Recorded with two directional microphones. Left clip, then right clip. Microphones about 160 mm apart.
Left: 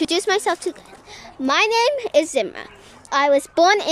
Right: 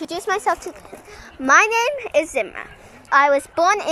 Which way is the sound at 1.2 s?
10° left (ahead or behind).